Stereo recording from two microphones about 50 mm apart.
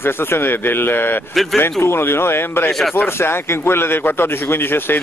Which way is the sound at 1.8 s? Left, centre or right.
Left.